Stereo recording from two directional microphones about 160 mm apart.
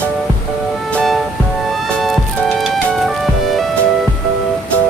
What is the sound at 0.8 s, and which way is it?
Music, 5° left (ahead or behind).